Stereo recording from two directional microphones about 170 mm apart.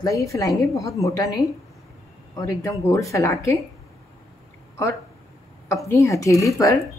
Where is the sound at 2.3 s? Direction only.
20° left (ahead or behind).